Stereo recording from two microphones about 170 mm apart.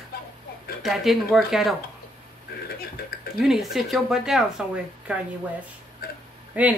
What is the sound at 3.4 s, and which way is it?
Speech, centre (ahead or behind).